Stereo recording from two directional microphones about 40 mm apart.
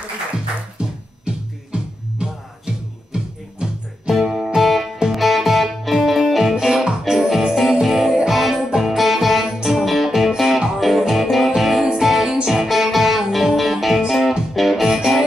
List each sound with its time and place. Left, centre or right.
0.7 s music: right
4.1 s music: centre